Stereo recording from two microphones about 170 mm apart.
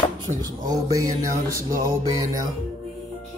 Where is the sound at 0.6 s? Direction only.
20° right (ahead or behind).